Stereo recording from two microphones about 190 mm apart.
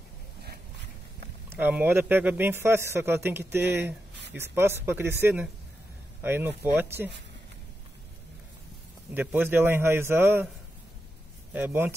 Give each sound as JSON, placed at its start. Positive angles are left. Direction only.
{"t": 1.5, "sound": "a man's voice", "side_deg": -10}
{"t": 3.4, "sound": "speech", "side_deg": -65}
{"t": 4.3, "sound": "a man's voice", "side_deg": -15}
{"t": 9.1, "sound": "a man's voice", "side_deg": -10}
{"t": 11.5, "sound": "a man's voice", "side_deg": -10}